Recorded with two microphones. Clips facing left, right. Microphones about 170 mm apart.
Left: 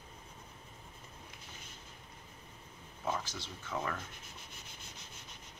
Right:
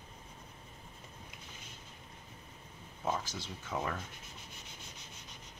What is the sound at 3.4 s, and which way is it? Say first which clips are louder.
Speech: right 1 dB; 15° right (ahead or behind).